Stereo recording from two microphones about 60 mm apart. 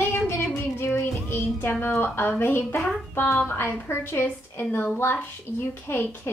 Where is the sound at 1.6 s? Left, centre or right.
Left.